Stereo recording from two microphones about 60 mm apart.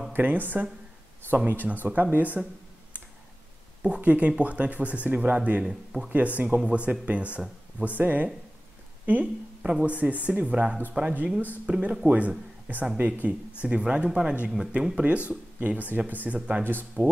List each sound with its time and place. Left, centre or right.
0.1 s speech: right
4.0 s speech: right
5.7 s speech: centre
6.0 s speech: right
12.1 s speech: right
13.6 s speech: centre